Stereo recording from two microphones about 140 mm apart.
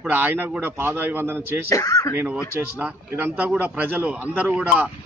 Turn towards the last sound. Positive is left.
turn(degrees=-10)  # may be behind; listen again after turning